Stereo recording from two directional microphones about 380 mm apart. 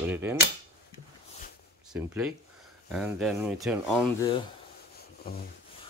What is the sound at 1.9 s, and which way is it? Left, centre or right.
Speech, centre.